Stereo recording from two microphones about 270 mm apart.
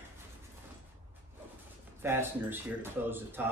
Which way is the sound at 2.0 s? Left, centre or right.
Centre.